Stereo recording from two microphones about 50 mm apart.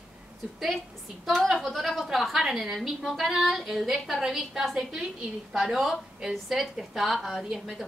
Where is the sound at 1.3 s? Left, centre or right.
Centre.